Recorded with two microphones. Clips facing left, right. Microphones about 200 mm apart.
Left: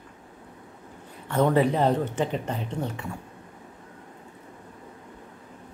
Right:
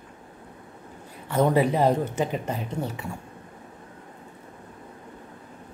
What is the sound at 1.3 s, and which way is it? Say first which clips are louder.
Speech: even; 10° right (ahead or behind).